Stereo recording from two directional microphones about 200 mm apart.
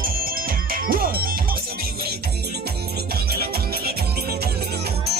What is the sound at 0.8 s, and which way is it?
Music, 45° right (ahead or behind).